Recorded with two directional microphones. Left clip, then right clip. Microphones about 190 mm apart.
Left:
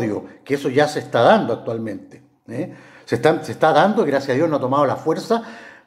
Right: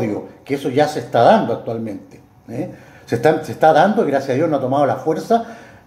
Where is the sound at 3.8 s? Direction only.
15° left (ahead or behind).